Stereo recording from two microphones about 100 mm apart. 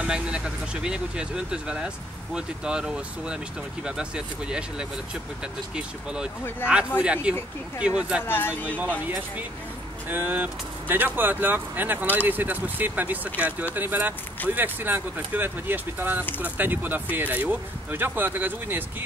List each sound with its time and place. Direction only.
0.0 s speech: 10° right (ahead or behind)
10.0 s speech: 20° right (ahead or behind)